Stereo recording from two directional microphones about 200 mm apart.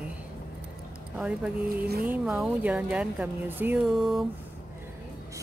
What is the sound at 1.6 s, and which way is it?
Speech, 50° right (ahead or behind).